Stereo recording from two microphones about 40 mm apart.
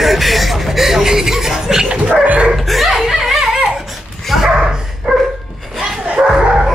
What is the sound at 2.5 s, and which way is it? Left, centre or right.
Dog, centre.